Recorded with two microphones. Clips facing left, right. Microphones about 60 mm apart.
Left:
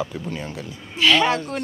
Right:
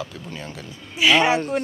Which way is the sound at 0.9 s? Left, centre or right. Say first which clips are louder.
Right 1 dB; centre.